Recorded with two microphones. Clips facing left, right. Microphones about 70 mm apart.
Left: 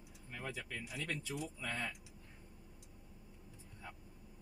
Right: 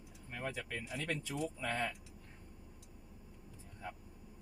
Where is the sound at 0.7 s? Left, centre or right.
Right.